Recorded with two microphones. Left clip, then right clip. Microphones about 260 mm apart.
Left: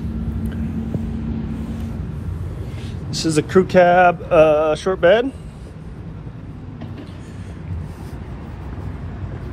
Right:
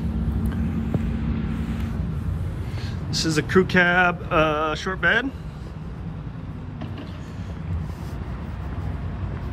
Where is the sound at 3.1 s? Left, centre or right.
Centre.